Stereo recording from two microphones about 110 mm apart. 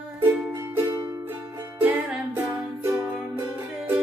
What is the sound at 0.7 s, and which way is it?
Music, 25° right (ahead or behind).